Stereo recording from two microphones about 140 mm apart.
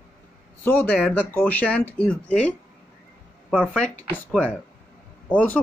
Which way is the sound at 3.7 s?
10° left (ahead or behind).